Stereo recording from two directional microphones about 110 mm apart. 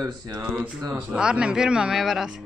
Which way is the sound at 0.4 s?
15° right (ahead or behind).